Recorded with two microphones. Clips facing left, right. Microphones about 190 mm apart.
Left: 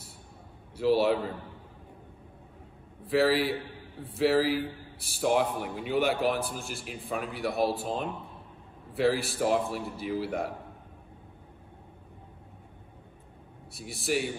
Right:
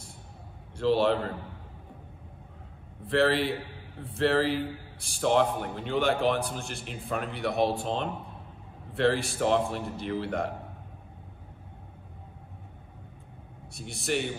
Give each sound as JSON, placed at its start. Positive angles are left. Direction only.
{"t": 0.7, "sound": "a man's voice", "side_deg": 10}
{"t": 3.1, "sound": "a man's voice", "side_deg": 5}
{"t": 13.7, "sound": "a man's voice", "side_deg": 5}